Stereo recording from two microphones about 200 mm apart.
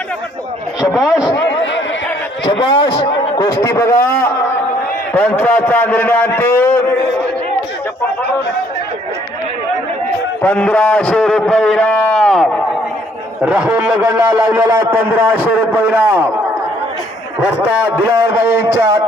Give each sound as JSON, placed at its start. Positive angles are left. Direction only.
{"t": 1.0, "sound": "a man's voice", "side_deg": 20}
{"t": 1.5, "sound": "a sound", "side_deg": 65}
{"t": 2.4, "sound": "a man's voice", "side_deg": 25}
{"t": 10.4, "sound": "a man's voice", "side_deg": 5}
{"t": 17.9, "sound": "a man's voice", "side_deg": -10}